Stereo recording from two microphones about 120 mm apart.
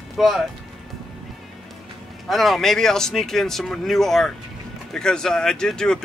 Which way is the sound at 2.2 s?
Centre (ahead or behind).